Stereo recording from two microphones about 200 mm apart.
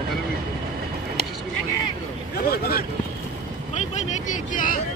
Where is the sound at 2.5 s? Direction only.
50° left (ahead or behind).